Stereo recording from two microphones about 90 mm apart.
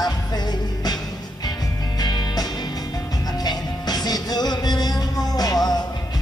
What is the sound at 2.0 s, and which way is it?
Music, 50° left (ahead or behind).